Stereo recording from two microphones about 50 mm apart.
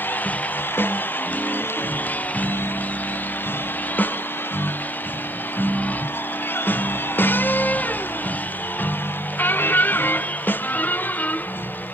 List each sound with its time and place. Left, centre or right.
5.6 s music: left
9.4 s music: left